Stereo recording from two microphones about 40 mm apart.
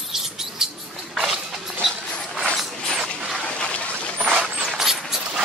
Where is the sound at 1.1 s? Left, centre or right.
Centre.